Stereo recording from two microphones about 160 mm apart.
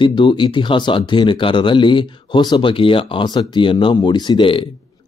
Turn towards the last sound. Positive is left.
turn(degrees=30)  # may be behind; listen again after turning